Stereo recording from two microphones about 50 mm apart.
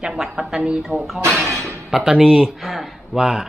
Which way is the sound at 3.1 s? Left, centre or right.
Centre.